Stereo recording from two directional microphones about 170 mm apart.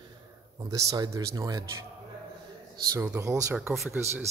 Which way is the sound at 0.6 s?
20° right (ahead or behind).